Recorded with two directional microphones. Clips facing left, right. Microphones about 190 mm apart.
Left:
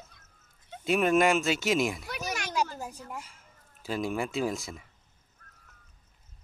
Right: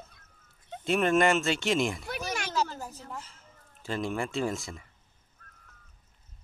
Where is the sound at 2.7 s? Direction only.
15° left (ahead or behind).